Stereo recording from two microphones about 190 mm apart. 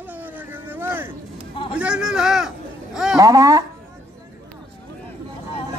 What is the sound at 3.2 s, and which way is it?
Speech, 20° right (ahead or behind).